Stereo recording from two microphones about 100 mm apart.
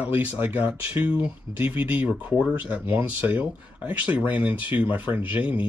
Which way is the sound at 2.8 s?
25° right (ahead or behind).